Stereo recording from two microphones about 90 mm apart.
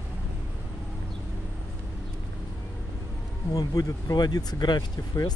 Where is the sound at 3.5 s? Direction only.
40° left (ahead or behind).